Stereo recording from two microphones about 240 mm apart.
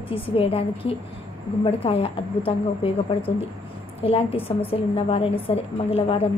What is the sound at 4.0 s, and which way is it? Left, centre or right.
A woman's voice, left.